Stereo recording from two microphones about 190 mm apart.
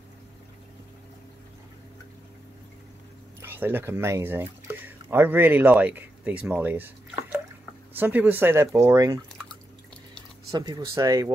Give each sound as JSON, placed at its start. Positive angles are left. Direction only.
{"t": 3.3, "sound": "speech", "side_deg": -10}
{"t": 7.9, "sound": "speech", "side_deg": -10}
{"t": 10.5, "sound": "speech", "side_deg": -20}